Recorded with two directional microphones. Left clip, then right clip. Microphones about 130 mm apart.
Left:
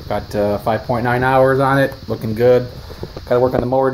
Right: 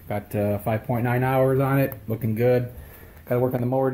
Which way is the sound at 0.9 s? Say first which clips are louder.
Left 9 dB; 40° right (ahead or behind).